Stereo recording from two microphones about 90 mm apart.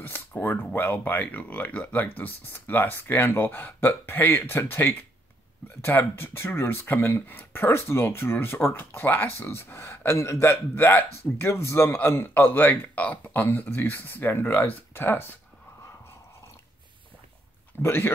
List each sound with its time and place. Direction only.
0.0 s speech: 25° left (ahead or behind)
17.8 s speech: 25° left (ahead or behind)